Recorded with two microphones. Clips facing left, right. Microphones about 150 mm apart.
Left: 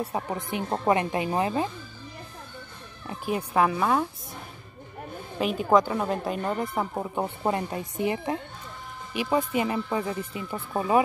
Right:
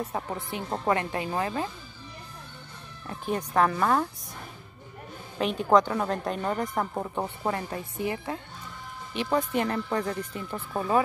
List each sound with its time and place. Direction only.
0.0 s speech: 15° left (ahead or behind)
3.1 s speech: 10° left (ahead or behind)
5.4 s a woman's voice: 5° left (ahead or behind)
7.4 s speech: 20° left (ahead or behind)